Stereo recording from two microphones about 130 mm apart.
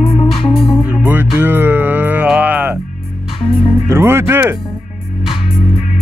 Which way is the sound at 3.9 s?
20° right (ahead or behind).